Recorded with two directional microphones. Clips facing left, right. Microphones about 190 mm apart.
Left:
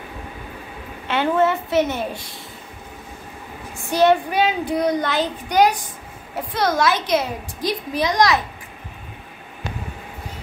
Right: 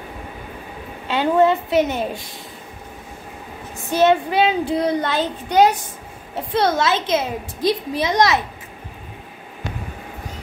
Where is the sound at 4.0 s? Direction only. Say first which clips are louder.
Right 1 dB; 20° right (ahead or behind).